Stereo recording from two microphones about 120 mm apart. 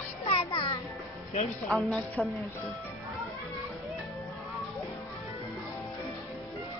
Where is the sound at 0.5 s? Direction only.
40° left (ahead or behind).